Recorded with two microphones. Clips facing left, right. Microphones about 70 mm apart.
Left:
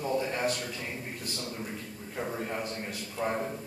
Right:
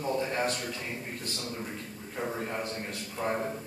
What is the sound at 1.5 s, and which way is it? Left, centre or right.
A man's voice, centre.